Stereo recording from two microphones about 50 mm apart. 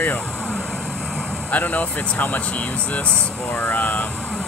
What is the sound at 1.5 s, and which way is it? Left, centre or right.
Speech, left.